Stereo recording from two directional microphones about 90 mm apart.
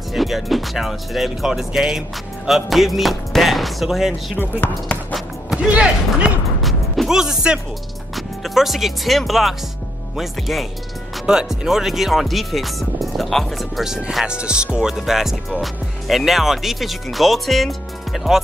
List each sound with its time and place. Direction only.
0.1 s speech: centre (ahead or behind)
6.6 s music: centre (ahead or behind)
8.5 s speech: centre (ahead or behind)